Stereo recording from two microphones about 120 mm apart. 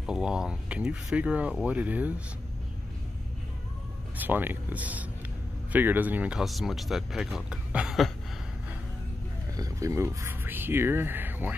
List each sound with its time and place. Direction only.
0.0 s speech: 5° right (ahead or behind)
4.2 s speech: 15° right (ahead or behind)
6.4 s speech: centre (ahead or behind)
9.6 s speech: 25° right (ahead or behind)